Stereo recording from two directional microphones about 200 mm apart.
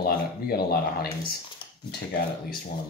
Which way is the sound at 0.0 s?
50° left (ahead or behind).